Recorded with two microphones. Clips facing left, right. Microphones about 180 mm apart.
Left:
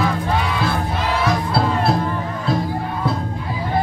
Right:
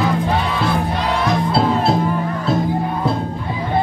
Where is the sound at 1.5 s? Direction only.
20° right (ahead or behind).